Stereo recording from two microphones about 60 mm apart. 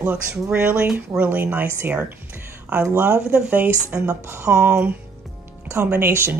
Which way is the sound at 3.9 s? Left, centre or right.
Right.